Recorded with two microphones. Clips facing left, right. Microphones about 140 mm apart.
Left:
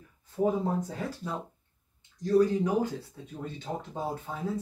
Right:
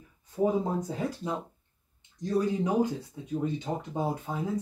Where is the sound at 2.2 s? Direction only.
20° right (ahead or behind).